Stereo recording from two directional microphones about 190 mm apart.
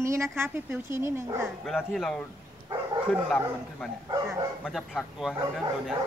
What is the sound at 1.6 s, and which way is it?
A man's voice, centre (ahead or behind).